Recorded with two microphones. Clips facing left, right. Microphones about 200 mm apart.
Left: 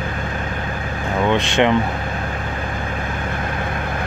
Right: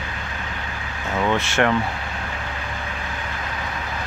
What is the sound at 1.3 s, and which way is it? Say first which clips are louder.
Speech: left 4 dB; 20° left (ahead or behind).